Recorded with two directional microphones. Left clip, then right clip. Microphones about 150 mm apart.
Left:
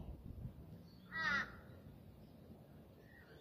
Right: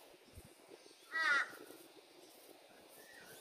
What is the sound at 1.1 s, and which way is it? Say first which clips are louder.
Crow: right 5 dB; 25° right (ahead or behind).